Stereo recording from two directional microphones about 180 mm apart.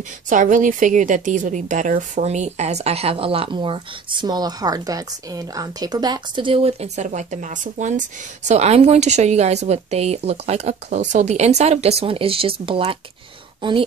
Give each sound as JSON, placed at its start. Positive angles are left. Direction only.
{"t": 0.3, "sound": "a woman's voice", "side_deg": -45}